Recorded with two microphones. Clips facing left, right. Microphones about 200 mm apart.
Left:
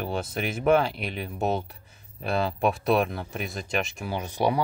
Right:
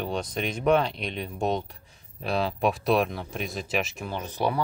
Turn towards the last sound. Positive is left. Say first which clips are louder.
# left 2 dB
turn(degrees=15)  # may be behind; listen again after turning